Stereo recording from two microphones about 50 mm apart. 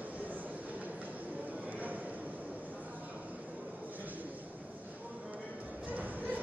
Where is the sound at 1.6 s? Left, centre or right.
Right.